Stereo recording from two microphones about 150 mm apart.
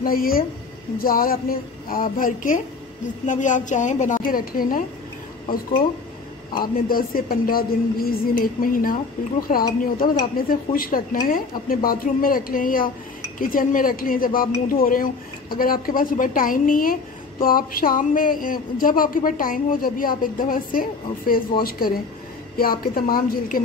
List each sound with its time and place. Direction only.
0.0 s a woman's voice: 75° left (ahead or behind)
6.6 s a woman's voice: 75° left (ahead or behind)
21.6 s a woman's voice: 90° left